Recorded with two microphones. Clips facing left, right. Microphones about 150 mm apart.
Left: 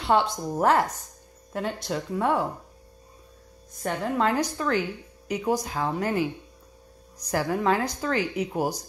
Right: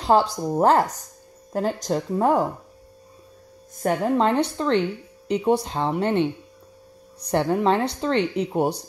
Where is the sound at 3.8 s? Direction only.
45° right (ahead or behind).